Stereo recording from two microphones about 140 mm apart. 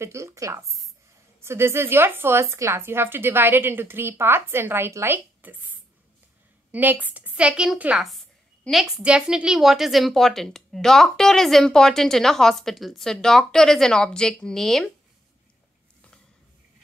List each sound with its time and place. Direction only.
0.0 s a woman's voice: 20° right (ahead or behind)
6.7 s a woman's voice: 10° right (ahead or behind)